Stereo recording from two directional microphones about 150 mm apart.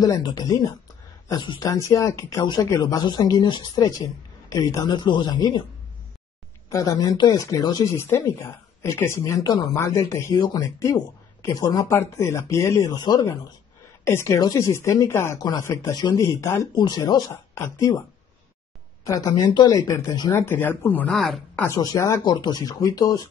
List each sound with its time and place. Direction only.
0.0 s speech: 25° left (ahead or behind)
6.7 s speech: 25° left (ahead or behind)
16.7 s speech: 30° left (ahead or behind)
19.0 s speech: 20° left (ahead or behind); by 21.6 s 5° left (ahead or behind)
21.6 s speech: 20° left (ahead or behind)